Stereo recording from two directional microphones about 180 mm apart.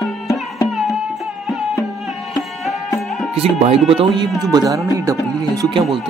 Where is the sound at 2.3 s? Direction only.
Centre (ahead or behind).